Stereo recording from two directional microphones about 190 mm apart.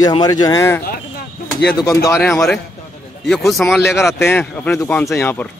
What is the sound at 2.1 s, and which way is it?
Speech, 10° left (ahead or behind).